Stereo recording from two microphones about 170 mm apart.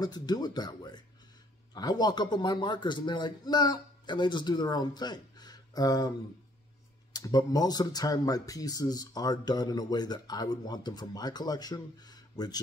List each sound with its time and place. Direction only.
0.0 s speech: 25° left (ahead or behind)